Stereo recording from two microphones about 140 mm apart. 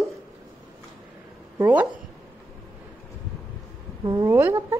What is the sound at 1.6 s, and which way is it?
Speech, 10° right (ahead or behind).